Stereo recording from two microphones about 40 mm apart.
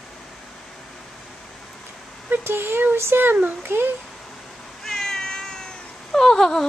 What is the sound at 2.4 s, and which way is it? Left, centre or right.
Speech, right.